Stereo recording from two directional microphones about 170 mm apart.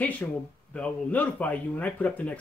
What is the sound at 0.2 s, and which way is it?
Speech, 10° left (ahead or behind).